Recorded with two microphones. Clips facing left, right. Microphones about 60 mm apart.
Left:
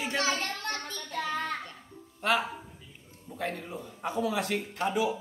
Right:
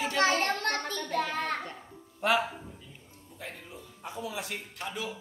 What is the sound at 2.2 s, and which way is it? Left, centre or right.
Speech, centre.